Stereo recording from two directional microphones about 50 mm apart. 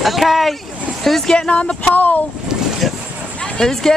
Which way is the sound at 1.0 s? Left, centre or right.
Centre.